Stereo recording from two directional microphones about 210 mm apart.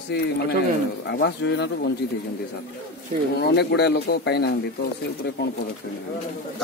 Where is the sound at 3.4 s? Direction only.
55° left (ahead or behind).